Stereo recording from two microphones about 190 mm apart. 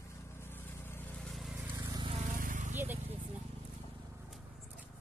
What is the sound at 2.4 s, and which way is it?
Vehicle, 45° right (ahead or behind).